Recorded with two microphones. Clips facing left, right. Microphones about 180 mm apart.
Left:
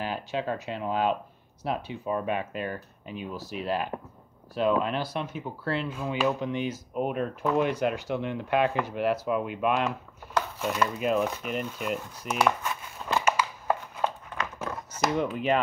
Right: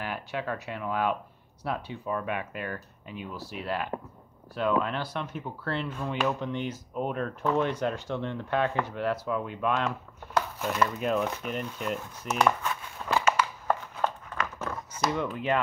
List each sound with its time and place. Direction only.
0.0 s speech: 20° left (ahead or behind)
5.7 s speech: 5° left (ahead or behind)
12.4 s crumpling: 5° left (ahead or behind)
14.3 s a sound: 20° left (ahead or behind)
15.3 s speech: 20° left (ahead or behind)